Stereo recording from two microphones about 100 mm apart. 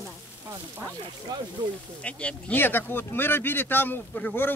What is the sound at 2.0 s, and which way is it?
Speech, 10° left (ahead or behind).